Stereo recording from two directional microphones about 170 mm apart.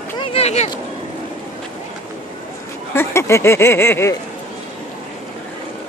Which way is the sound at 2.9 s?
15° left (ahead or behind).